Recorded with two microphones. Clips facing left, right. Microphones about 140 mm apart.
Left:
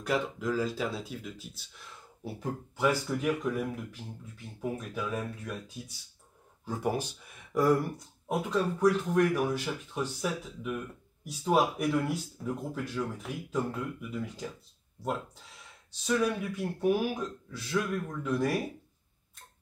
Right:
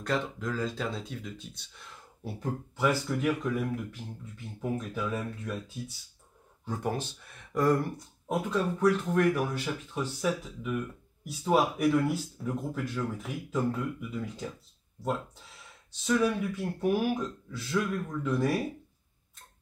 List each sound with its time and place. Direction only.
0.0 s speech: 10° left (ahead or behind)
4.6 s speech: centre (ahead or behind)
6.6 s speech: 5° left (ahead or behind)
16.0 s speech: centre (ahead or behind)